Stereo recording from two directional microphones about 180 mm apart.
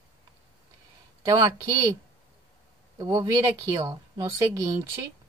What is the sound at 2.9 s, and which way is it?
A woman's voice, 20° right (ahead or behind).